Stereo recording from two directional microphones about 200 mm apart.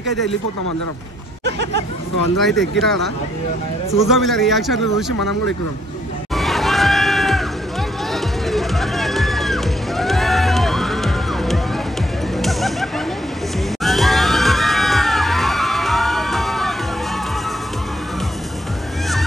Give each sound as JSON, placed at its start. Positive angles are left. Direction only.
{"t": 1.4, "sound": "speech", "side_deg": -60}
{"t": 2.3, "sound": "a man's voice", "side_deg": 0}
{"t": 6.3, "sound": "a sound", "side_deg": 0}
{"t": 8.1, "sound": "music", "side_deg": 0}
{"t": 13.8, "sound": "crowd", "side_deg": 0}